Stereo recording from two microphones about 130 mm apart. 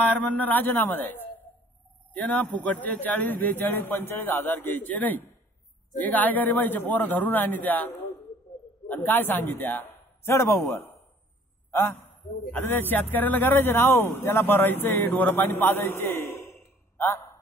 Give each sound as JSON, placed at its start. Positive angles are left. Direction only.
{"t": 0.0, "sound": "a man's voice", "side_deg": 10}